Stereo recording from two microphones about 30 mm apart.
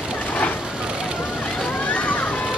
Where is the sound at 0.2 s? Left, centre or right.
Left.